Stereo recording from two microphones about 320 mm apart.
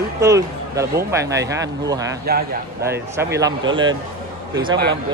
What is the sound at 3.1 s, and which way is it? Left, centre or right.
Speech, centre.